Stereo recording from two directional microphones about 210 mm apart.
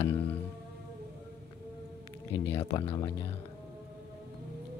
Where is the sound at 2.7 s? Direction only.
15° left (ahead or behind).